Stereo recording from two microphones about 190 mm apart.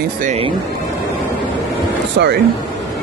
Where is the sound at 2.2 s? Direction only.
65° right (ahead or behind).